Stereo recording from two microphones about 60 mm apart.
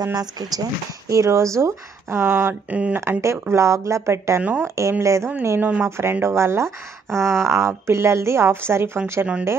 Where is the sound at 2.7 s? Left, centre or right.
Right.